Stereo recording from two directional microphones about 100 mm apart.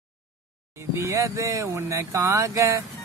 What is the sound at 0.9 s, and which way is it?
Speech, 30° right (ahead or behind).